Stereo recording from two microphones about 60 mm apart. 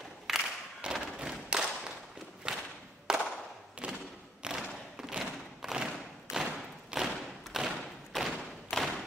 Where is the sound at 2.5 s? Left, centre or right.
Centre.